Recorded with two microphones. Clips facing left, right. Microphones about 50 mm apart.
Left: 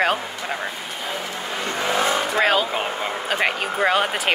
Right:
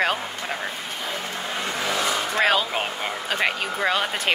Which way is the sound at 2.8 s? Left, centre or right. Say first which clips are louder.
Left 3 dB; left.